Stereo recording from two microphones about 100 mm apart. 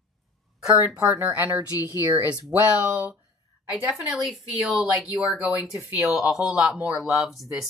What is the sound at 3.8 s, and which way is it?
Speech, centre (ahead or behind).